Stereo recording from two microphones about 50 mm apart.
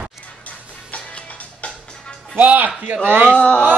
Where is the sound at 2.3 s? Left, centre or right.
Right.